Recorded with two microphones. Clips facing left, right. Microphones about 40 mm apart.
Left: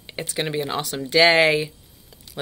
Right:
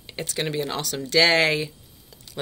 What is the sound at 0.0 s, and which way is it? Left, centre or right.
Speech, centre.